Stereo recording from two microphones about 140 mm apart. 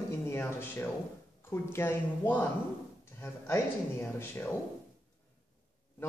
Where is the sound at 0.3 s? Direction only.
15° left (ahead or behind).